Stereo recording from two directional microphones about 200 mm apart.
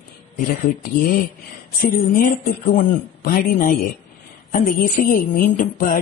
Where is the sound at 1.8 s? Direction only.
45° left (ahead or behind).